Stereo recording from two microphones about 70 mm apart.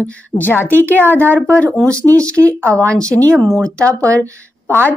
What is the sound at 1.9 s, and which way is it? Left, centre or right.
Speech, right.